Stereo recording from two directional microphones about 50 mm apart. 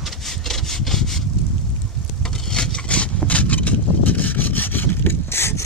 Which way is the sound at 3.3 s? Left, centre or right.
Left.